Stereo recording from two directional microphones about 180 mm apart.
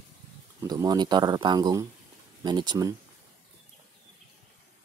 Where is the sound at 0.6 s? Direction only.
20° right (ahead or behind).